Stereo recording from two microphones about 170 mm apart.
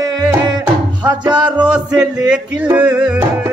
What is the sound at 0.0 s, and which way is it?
Music, 20° right (ahead or behind).